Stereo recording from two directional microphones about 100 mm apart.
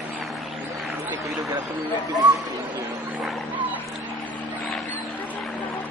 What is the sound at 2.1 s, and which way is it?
Speech, 40° right (ahead or behind).